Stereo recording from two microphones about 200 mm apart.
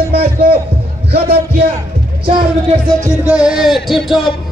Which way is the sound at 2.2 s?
25° right (ahead or behind).